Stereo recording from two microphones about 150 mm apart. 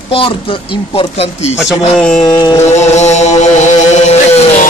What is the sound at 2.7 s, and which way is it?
Music, 50° left (ahead or behind).